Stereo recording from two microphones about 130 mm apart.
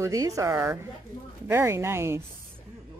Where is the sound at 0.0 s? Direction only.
25° right (ahead or behind).